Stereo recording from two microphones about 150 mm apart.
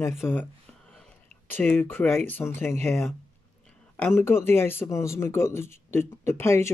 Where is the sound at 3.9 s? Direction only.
10° left (ahead or behind).